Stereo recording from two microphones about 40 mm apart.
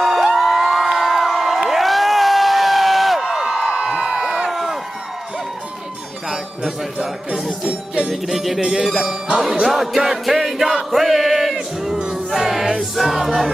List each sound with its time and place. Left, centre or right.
0.3 s a sound: centre
0.9 s crowd: centre
4.5 s crowd: centre
6.2 s music: centre
7.6 s music: right
8.1 s music: centre
10.9 s chant: centre
11.5 s music: centre
12.3 s music: centre